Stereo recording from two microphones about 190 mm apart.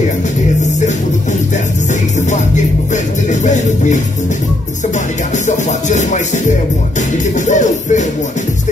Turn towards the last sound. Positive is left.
turn(degrees=40)  # may be behind; listen again after turning